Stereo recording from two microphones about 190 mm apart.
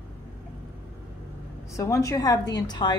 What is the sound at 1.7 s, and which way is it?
A woman's voice, 15° left (ahead or behind).